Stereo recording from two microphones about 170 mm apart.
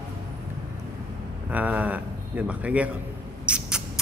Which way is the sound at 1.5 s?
10° right (ahead or behind).